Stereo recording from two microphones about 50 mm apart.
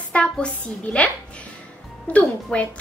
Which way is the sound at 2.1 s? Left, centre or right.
Left.